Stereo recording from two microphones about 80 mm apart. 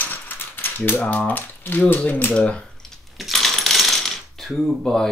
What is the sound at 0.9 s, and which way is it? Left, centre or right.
Speech, left.